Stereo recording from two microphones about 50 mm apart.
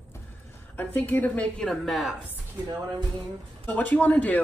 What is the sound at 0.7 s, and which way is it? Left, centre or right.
Speech, left.